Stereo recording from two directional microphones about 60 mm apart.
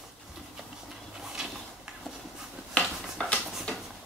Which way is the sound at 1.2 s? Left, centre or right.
Centre.